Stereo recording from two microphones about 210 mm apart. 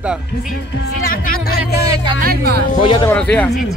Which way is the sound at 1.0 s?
45° left (ahead or behind).